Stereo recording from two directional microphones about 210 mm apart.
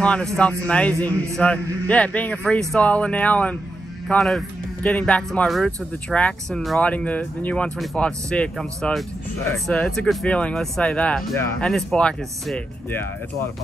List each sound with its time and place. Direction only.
0.0 s speech: 5° left (ahead or behind)